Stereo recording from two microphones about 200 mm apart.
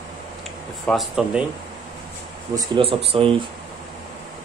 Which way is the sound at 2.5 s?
25° right (ahead or behind).